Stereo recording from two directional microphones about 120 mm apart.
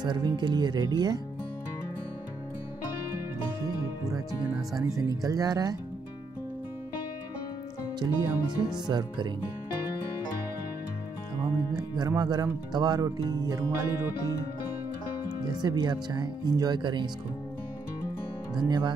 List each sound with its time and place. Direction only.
0.0 s speech: 35° right (ahead or behind)
4.0 s speech: 30° right (ahead or behind)
8.0 s speech: 40° right (ahead or behind)
12.2 s speech: 35° right (ahead or behind)
15.4 s speech: 35° right (ahead or behind)
18.6 s speech: 35° right (ahead or behind)